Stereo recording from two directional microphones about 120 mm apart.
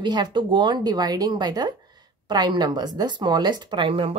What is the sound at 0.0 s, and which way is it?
Speech, 40° right (ahead or behind).